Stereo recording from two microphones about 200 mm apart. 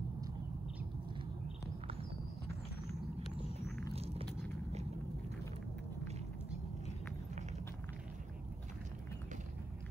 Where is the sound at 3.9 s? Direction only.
30° right (ahead or behind).